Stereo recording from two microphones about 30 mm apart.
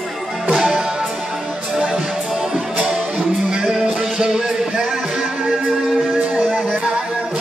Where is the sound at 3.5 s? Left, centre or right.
Right.